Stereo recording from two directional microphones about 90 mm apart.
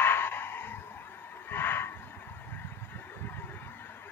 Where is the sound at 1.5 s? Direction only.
25° left (ahead or behind).